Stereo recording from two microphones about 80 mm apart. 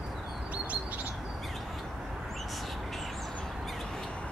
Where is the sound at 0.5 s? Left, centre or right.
Centre.